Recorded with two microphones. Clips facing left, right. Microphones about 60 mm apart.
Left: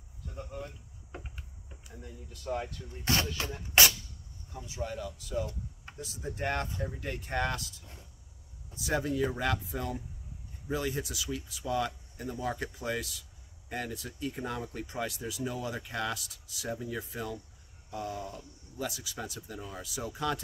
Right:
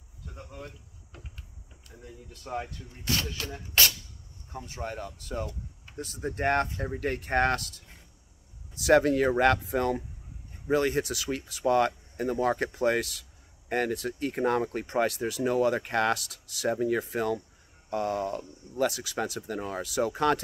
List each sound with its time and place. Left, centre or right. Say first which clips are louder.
1.1 s cricket: left 5 dB; left
2.3 s speech: even; right
3.1 s speech: left 1 dB; left
4.5 s speech: right 1 dB; right
8.7 s speech: right 10 dB; right